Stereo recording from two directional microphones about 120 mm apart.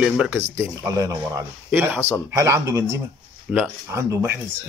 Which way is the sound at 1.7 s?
15° right (ahead or behind).